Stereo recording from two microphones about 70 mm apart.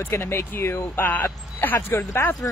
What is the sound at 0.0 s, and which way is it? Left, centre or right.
Speech, left.